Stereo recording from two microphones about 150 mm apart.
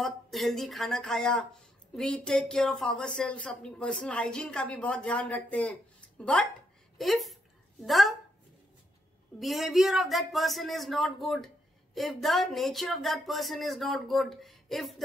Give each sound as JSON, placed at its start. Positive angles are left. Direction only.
{"t": 0.0, "sound": "speech", "side_deg": 0}
{"t": 9.4, "sound": "speech", "side_deg": 0}